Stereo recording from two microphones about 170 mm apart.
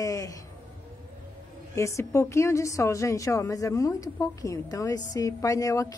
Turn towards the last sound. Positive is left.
turn(degrees=20)  # may be behind; listen again after turning